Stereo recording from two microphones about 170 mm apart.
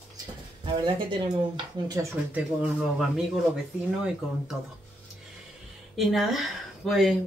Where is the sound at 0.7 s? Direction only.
30° right (ahead or behind).